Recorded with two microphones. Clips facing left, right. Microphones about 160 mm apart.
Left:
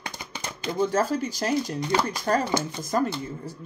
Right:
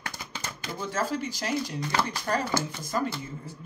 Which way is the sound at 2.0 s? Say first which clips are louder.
Left 4 dB; 45° left (ahead or behind).